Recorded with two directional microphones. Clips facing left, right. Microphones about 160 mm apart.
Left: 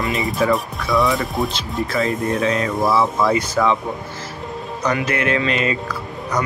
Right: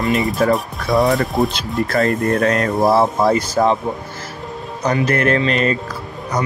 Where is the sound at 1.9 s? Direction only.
55° right (ahead or behind); by 3.7 s 40° right (ahead or behind).